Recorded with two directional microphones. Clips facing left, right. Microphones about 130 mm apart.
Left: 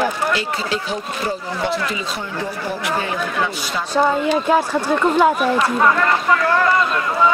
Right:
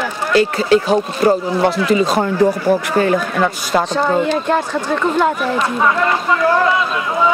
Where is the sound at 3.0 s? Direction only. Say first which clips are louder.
Right 7 dB; 50° right (ahead or behind).